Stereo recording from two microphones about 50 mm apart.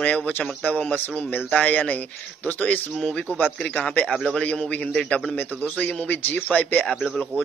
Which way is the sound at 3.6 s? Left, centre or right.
Centre.